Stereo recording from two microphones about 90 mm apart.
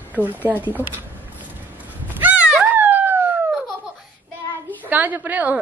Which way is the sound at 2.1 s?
15° right (ahead or behind).